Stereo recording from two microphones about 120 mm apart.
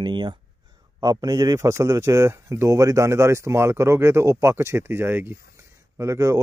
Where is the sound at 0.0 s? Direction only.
40° right (ahead or behind).